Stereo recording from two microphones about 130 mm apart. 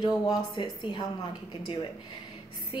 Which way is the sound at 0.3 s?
35° left (ahead or behind).